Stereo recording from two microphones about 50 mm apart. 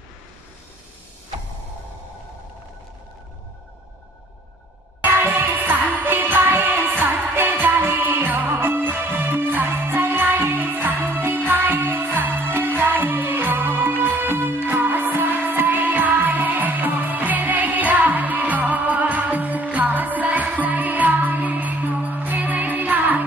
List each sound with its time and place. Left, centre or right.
5.0 s music: right